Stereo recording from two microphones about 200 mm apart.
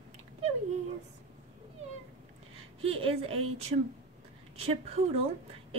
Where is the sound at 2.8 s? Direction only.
25° right (ahead or behind).